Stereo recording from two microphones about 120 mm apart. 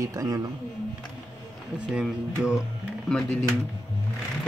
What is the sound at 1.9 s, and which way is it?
Speech, 5° right (ahead or behind).